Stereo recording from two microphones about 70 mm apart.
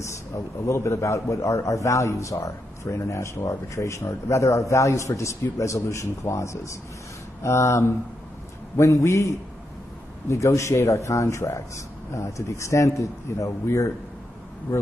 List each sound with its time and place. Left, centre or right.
0.0 s a man's voice: left